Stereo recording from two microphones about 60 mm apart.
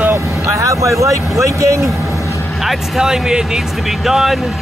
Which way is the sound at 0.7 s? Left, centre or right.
Right.